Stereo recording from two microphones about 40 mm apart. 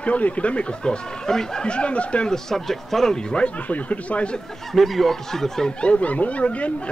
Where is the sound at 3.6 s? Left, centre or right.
Left.